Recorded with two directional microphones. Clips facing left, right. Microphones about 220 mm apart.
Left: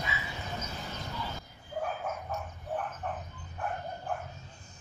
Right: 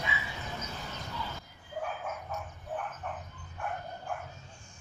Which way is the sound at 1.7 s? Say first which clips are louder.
Left 2 dB; 35° left (ahead or behind).